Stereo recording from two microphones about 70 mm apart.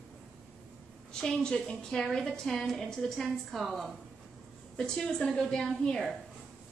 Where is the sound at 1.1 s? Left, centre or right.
Centre.